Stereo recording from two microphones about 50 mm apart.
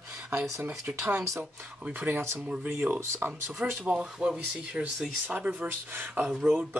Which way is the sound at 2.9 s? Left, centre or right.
Right.